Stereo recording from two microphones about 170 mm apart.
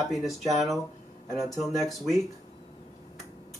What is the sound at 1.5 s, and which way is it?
Speech, centre (ahead or behind).